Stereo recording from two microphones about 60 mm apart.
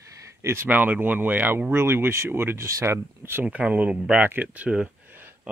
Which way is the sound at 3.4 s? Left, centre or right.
Right.